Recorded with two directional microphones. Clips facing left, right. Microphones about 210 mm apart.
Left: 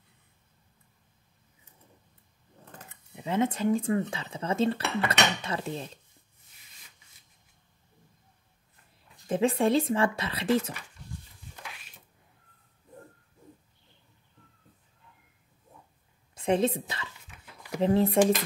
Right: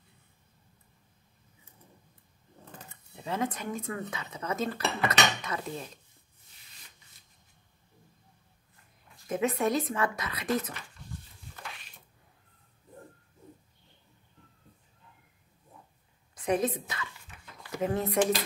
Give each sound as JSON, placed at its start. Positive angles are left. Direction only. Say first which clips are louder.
{"t": 3.2, "sound": "speech", "louder": "left 5 dB", "side_deg": 20}
{"t": 9.3, "sound": "speech", "louder": "left 4 dB", "side_deg": 30}
{"t": 16.3, "sound": "a woman's voice", "louder": "left 3 dB", "side_deg": 25}